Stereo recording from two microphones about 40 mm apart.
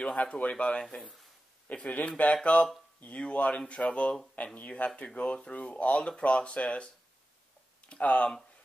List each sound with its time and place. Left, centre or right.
0.0 s speech: left
7.9 s speech: left